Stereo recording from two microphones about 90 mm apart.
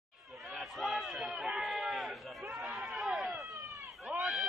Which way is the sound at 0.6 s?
Centre (ahead or behind).